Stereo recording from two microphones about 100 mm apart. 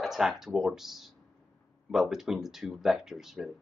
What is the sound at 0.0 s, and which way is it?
Speech, 5° right (ahead or behind).